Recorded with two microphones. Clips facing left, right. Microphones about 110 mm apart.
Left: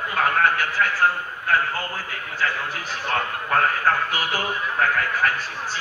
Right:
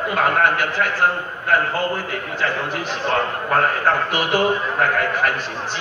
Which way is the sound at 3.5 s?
35° right (ahead or behind).